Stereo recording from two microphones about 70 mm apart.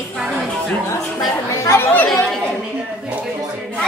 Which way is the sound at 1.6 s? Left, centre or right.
Left.